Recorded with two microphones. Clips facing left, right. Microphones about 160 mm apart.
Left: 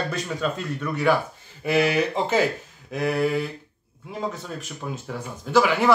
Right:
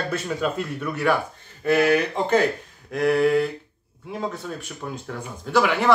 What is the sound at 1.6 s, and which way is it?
A man's voice, 10° left (ahead or behind).